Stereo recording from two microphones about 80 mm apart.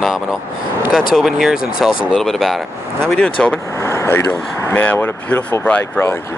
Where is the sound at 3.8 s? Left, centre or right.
Left.